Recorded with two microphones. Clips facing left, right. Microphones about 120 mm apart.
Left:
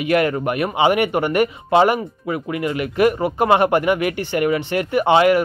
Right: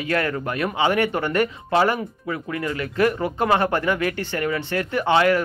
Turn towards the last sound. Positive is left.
turn(degrees=15)  # may be behind; listen again after turning